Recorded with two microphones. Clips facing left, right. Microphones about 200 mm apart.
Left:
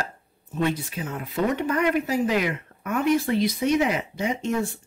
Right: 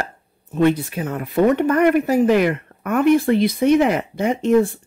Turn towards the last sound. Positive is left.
turn(degrees=-55)  # may be behind; listen again after turning